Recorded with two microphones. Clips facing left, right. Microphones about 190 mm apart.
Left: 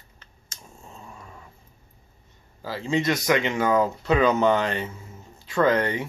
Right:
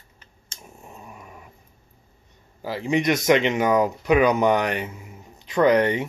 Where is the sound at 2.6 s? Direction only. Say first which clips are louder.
Right 2 dB; 15° right (ahead or behind).